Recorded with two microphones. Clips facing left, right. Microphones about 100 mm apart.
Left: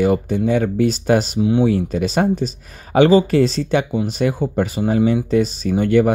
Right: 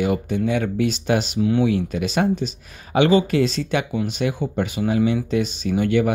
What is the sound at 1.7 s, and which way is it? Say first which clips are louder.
Speech: left 3 dB; 35° left (ahead or behind).